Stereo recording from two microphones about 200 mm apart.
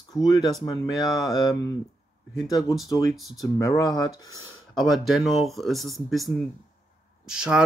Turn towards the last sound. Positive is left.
turn(degrees=-5)  # may be behind; listen again after turning